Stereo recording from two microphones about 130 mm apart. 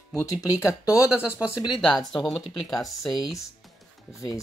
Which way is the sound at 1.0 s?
10° right (ahead or behind).